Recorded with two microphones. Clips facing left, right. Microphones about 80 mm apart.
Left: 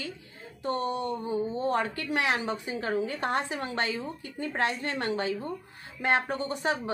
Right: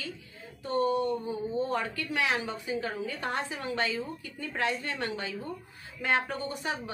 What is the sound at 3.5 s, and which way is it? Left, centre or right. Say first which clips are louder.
Speech: left 1 dB; left.